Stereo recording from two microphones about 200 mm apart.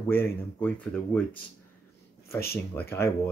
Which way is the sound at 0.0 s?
10° left (ahead or behind).